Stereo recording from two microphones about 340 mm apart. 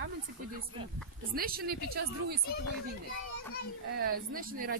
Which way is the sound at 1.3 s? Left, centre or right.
Right.